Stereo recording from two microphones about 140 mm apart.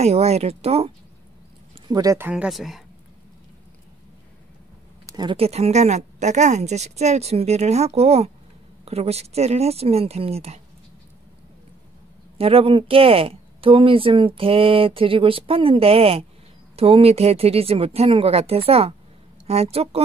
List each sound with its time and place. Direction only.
0.0 s speech: 50° right (ahead or behind)
1.9 s speech: 25° right (ahead or behind)
2.1 s speech: 10° right (ahead or behind)
5.0 s speech: 30° right (ahead or behind); by 10.6 s 45° right (ahead or behind)
12.4 s speech: 40° right (ahead or behind)